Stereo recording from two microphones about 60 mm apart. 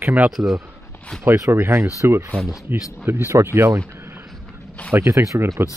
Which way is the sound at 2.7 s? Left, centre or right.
Right.